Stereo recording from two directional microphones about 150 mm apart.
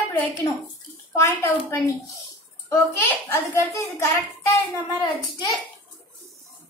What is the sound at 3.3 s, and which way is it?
A child's voice, 15° left (ahead or behind).